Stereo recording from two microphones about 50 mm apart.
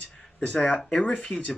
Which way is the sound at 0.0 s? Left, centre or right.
Centre.